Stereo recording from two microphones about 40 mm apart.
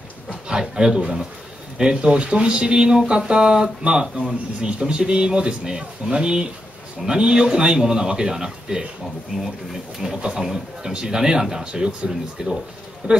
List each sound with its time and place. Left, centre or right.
0.5 s speech: centre
10.0 s speech: right
13.0 s speech: right